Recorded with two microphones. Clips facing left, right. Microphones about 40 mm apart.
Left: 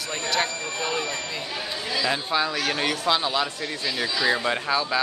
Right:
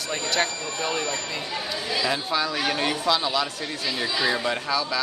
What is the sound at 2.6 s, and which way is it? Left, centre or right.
Speech, centre.